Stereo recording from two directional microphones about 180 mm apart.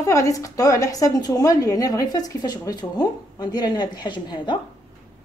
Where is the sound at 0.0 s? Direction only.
20° left (ahead or behind).